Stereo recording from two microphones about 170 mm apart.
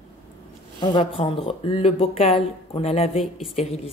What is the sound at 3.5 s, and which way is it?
Speech, 40° left (ahead or behind).